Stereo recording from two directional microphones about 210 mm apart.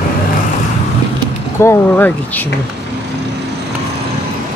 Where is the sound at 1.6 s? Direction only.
10° left (ahead or behind).